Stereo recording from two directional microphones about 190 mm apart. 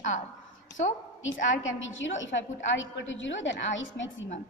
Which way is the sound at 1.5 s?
90° left.